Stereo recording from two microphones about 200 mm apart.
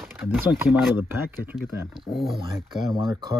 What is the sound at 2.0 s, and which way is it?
Speech, centre (ahead or behind).